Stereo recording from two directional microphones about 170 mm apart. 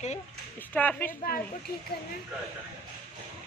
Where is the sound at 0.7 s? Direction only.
10° left (ahead or behind).